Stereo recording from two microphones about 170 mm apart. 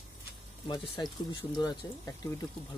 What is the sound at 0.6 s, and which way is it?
Speech, 25° left (ahead or behind).